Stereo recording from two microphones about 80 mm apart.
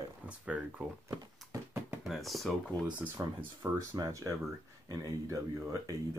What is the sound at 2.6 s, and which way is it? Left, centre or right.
Speech, centre.